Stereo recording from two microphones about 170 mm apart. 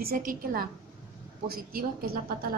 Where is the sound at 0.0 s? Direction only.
55° right (ahead or behind).